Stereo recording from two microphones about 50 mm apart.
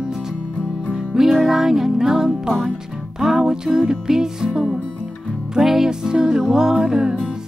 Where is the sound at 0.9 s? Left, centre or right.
Centre.